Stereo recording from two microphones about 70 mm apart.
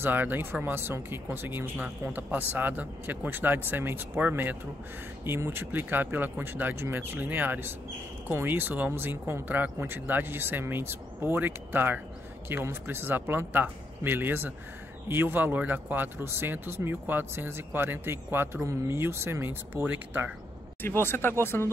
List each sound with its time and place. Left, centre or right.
0.0 s speech: right
20.8 s speech: left